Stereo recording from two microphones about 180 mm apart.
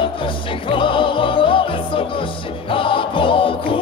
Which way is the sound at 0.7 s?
30° left (ahead or behind).